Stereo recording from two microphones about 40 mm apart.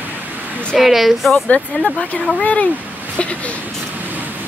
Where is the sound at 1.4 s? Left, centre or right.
Left.